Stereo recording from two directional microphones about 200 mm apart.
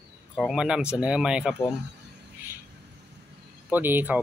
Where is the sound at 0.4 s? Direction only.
Centre (ahead or behind).